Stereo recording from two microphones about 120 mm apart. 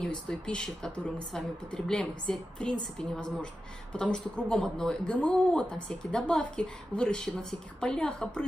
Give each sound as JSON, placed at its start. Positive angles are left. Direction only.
{"t": 0.0, "sound": "a woman's voice", "side_deg": 5}